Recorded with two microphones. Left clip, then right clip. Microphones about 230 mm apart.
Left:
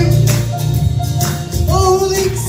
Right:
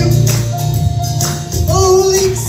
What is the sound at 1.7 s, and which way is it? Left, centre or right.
Music, right.